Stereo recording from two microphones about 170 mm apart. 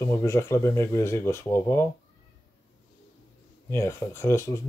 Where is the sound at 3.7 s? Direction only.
15° left (ahead or behind).